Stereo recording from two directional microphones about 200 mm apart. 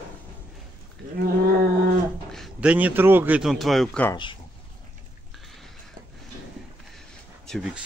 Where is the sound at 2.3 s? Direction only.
Centre (ahead or behind).